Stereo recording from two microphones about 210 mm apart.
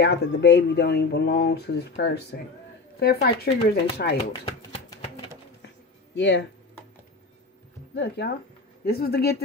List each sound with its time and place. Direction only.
0.0 s speech: 55° left (ahead or behind)
6.1 s speech: 60° left (ahead or behind)
7.9 s speech: 55° left (ahead or behind)